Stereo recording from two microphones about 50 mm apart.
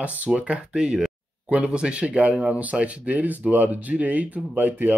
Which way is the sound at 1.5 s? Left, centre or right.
Right.